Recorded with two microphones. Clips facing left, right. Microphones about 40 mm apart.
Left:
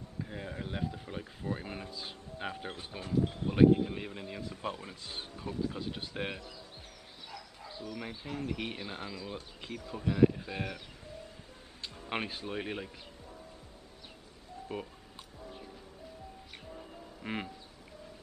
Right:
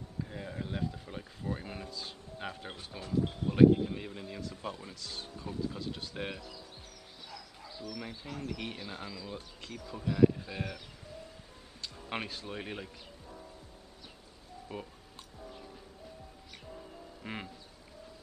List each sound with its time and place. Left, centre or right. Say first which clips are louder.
0.2 s speech: even; centre
8.0 s speech: left 4 dB; centre
11.8 s speech: left 2 dB; left
14.7 s music: left 3 dB; centre
17.2 s duck: left 4 dB; centre